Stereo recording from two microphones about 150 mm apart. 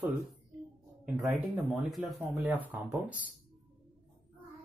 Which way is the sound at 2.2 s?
10° right (ahead or behind).